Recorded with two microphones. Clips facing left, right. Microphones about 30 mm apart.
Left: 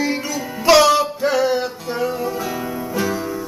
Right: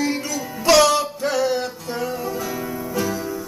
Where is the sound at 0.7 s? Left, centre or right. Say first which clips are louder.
Left 3 dB; centre.